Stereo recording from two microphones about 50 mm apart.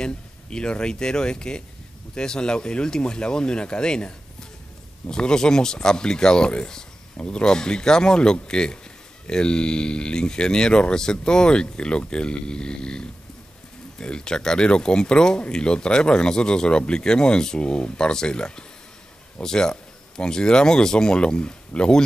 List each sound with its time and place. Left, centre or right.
0.0 s speech: centre